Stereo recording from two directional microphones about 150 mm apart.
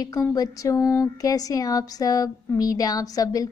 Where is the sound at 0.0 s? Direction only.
25° left (ahead or behind).